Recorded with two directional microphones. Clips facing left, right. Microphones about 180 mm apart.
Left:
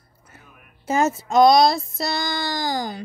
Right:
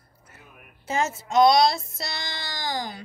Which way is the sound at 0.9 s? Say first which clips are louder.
Left 4 dB; 45° left (ahead or behind).